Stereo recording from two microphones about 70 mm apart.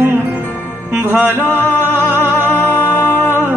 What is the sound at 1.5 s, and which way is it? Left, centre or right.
Music, left.